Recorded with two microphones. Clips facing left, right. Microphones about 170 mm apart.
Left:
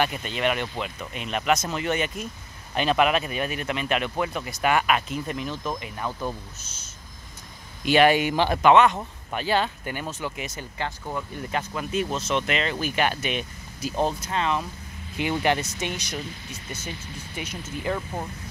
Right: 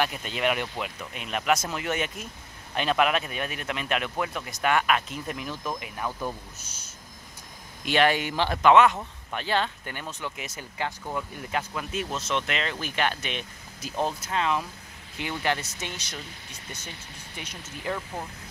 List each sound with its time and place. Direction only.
0.0 s speech: centre (ahead or behind)
7.8 s speech: 10° left (ahead or behind)
8.6 s speech: 5° right (ahead or behind)
9.3 s speech: 5° left (ahead or behind)
15.4 s speech: 15° left (ahead or behind)
17.4 s speech: 5° left (ahead or behind)